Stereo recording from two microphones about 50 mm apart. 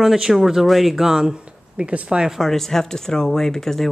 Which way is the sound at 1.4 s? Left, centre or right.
Right.